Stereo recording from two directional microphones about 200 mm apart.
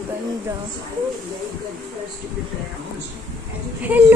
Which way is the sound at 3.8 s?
10° right (ahead or behind).